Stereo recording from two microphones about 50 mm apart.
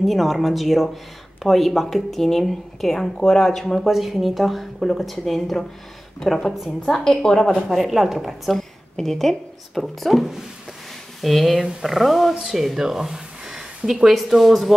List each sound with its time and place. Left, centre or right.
0.0 s a woman's voice: centre
3.8 s a woman's voice: centre
6.8 s speech: centre
7.6 s a woman's voice: centre